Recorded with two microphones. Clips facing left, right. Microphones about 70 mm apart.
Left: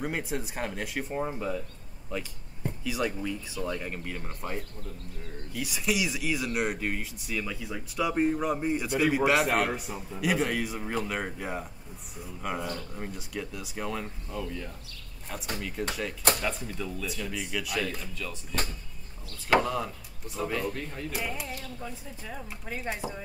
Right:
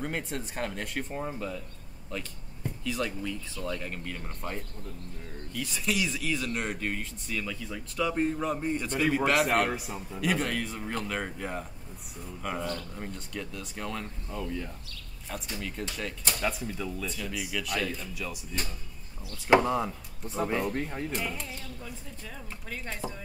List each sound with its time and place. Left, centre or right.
0.0 s speech: centre
14.3 s speech: centre
15.8 s speech: centre
19.5 s speech: right
21.1 s speech: centre
22.3 s speech: centre